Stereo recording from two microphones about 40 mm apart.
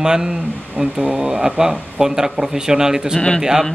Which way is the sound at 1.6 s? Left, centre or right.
Centre.